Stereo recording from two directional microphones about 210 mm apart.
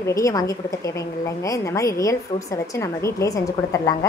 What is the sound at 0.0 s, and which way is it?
A woman's voice, 15° left (ahead or behind).